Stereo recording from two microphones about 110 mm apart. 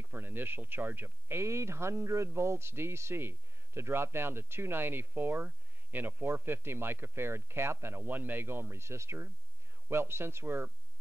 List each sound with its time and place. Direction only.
0.1 s speech: 20° right (ahead or behind)